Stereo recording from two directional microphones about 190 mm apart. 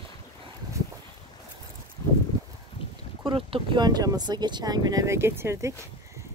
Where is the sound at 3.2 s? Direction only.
25° right (ahead or behind).